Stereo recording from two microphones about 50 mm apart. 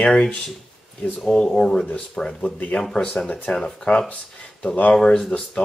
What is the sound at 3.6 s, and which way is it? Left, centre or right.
Speech, centre.